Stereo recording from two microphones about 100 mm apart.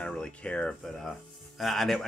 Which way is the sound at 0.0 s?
10° left (ahead or behind).